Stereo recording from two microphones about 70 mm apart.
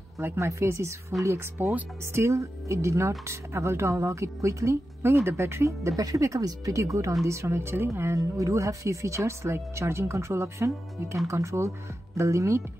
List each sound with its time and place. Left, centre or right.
0.4 s speech: right